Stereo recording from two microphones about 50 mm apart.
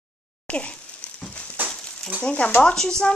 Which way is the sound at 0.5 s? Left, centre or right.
Left.